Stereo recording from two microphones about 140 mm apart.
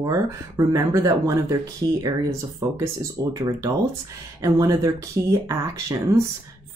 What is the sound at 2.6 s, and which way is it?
Speech, 25° right (ahead or behind).